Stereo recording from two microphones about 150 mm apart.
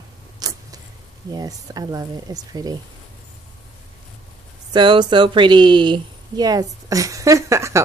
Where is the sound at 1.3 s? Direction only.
25° right (ahead or behind).